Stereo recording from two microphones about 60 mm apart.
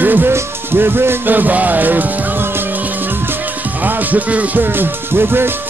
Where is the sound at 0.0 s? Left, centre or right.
Right.